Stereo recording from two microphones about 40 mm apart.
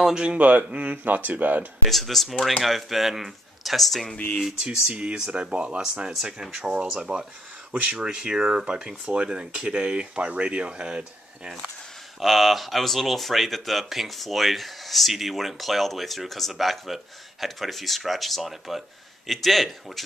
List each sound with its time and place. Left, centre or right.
0.1 s speech: right
1.0 s speech: right
1.9 s speech: centre
4.9 s speech: right
12.2 s speech: centre